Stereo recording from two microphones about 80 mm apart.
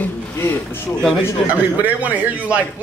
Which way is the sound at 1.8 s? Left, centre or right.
Right.